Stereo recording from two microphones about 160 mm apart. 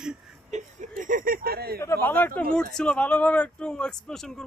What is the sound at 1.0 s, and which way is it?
Speech, 60° right (ahead or behind).